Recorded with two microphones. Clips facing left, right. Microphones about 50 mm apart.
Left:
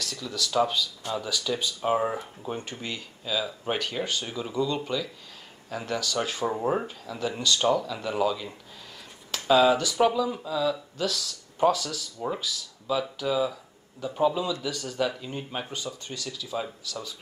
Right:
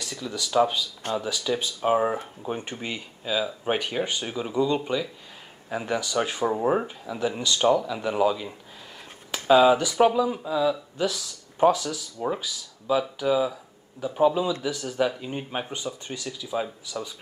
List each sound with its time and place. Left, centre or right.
0.0 s speech: centre